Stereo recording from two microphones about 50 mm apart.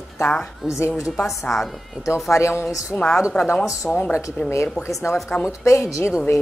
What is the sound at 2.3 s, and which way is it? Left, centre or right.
Speech, left.